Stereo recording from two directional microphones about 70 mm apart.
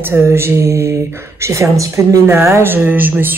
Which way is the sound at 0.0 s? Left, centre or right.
Right.